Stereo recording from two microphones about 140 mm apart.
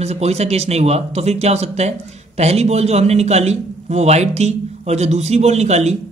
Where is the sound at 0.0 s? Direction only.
50° right (ahead or behind).